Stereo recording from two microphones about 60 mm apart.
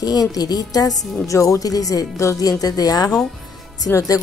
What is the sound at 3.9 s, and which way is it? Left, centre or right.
Speech, left.